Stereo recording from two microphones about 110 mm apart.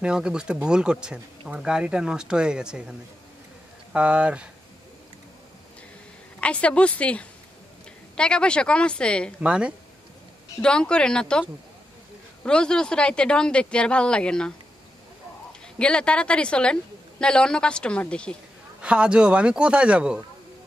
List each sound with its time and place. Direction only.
0.0 s a man's voice: 5° right (ahead or behind)
3.9 s a man's voice: 10° right (ahead or behind)
6.4 s speech: 10° left (ahead or behind)
9.4 s a man's voice: 10° right (ahead or behind)
10.6 s speech: 10° left (ahead or behind)
12.4 s speech: 5° left (ahead or behind)
15.8 s speech: 10° left (ahead or behind)
18.8 s a man's voice: 10° right (ahead or behind)